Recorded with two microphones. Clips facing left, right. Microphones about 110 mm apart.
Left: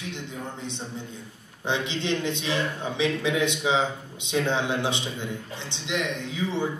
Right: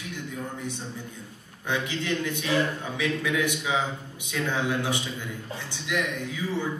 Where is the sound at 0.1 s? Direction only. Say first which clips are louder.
Right 1 dB; 20° left (ahead or behind).